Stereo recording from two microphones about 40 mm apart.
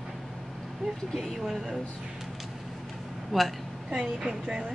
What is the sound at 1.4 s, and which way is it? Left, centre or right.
Speech, centre.